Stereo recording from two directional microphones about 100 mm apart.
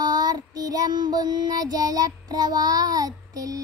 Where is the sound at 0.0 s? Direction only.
40° right (ahead or behind).